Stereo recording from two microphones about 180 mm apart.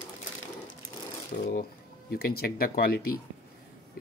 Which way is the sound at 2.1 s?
55° left (ahead or behind).